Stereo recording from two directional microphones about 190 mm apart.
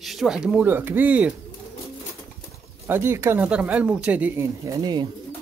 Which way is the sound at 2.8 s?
10° right (ahead or behind).